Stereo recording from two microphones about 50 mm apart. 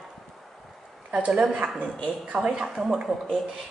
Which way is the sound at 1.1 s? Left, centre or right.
Centre.